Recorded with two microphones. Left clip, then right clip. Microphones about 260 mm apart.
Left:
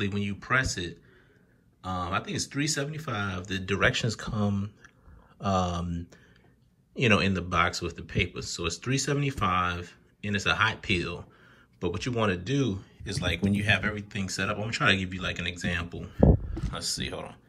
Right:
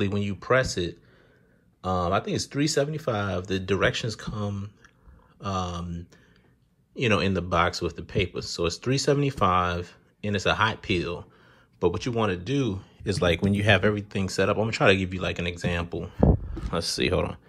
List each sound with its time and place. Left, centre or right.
0.0 s speech: centre
13.0 s speech: right
16.7 s speech: right